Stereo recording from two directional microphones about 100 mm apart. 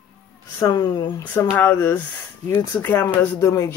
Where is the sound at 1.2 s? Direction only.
20° left (ahead or behind).